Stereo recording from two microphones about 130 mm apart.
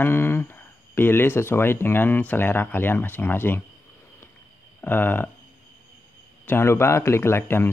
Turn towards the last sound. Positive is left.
turn(degrees=20)  # may be behind; listen again after turning